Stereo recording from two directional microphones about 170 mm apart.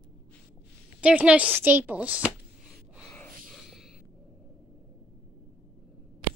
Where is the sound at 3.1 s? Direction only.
5° left (ahead or behind).